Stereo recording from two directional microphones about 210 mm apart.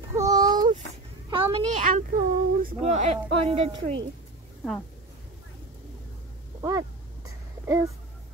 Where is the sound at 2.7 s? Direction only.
30° right (ahead or behind).